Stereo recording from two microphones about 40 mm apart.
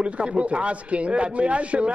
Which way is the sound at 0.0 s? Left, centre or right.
Right.